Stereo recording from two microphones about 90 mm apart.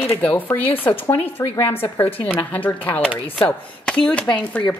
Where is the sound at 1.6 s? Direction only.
25° left (ahead or behind).